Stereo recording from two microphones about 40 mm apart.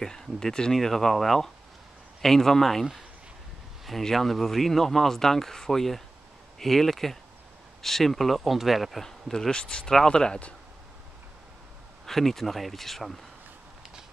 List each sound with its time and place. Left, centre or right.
0.0 s speech: centre
4.0 s speech: centre
9.0 s speech: centre
9.5 s speech: left
12.1 s speech: centre